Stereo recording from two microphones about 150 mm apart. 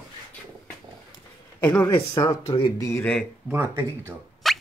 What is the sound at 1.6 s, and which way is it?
Speech, 15° left (ahead or behind).